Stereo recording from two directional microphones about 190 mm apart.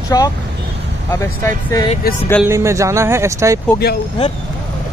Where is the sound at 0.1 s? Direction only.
20° left (ahead or behind).